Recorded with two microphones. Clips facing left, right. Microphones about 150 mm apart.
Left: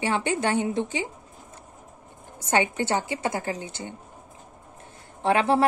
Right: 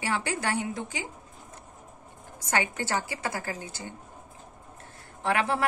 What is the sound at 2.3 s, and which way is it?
A woman's voice, 25° left (ahead or behind).